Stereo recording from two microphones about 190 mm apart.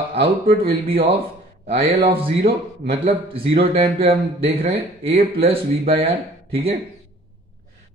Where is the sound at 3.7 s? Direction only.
30° right (ahead or behind).